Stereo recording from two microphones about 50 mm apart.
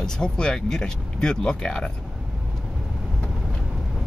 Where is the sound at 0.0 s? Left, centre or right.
Centre.